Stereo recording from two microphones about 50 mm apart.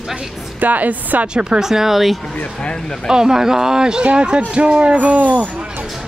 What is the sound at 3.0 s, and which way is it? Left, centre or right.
Speech, centre.